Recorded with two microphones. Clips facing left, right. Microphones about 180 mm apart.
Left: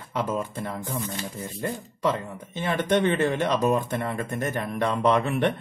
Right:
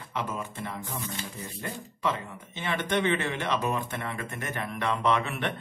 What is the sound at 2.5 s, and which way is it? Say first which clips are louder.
Speech: left 5 dB; 40° left (ahead or behind).